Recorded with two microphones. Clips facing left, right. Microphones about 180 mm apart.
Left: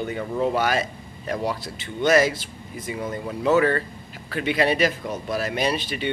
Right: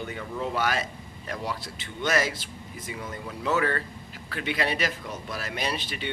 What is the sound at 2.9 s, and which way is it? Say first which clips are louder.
Speech: left 8 dB; 40° left (ahead or behind).